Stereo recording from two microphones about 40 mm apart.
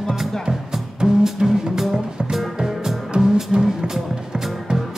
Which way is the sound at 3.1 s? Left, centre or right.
Right.